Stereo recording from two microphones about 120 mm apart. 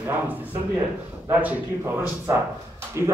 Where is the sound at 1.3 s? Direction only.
15° right (ahead or behind).